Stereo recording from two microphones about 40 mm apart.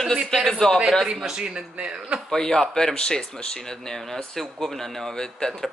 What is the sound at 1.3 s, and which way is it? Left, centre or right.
Speech, right.